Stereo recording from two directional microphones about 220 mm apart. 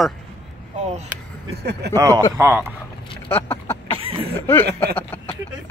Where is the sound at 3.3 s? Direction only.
10° left (ahead or behind).